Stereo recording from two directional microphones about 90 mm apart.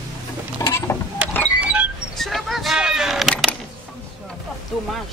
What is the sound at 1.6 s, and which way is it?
Music, 15° right (ahead or behind).